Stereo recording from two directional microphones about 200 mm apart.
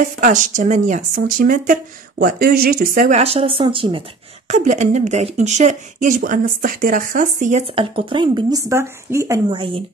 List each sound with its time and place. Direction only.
0.2 s speech: 40° right (ahead or behind)
4.5 s speech: 35° right (ahead or behind)